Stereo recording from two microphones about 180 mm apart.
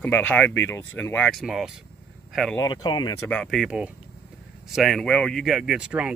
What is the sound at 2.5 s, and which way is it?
Speech, 20° left (ahead or behind).